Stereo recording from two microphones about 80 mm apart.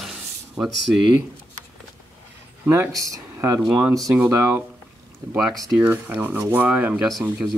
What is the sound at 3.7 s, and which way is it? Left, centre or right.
Speech, right.